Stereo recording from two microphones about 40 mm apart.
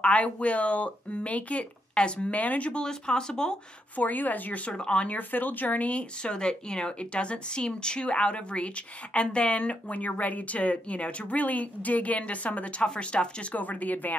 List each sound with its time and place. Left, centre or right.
0.0 s speech: left
2.3 s speech: left
2.7 s speech: left
3.9 s speech: left
4.6 s speech: left
5.1 s speech: left
6.3 s speech: left
12.8 s speech: left